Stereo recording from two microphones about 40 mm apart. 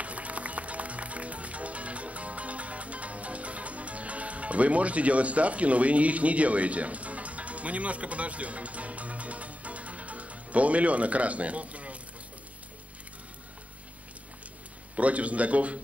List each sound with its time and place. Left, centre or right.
0.0 s music: right
15.0 s speech: right